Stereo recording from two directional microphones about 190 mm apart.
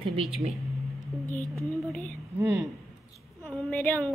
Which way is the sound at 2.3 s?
15° right (ahead or behind).